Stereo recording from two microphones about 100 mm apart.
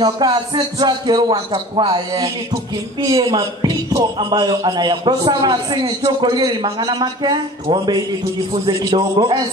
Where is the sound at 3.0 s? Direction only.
35° right (ahead or behind); by 9.4 s 55° right (ahead or behind).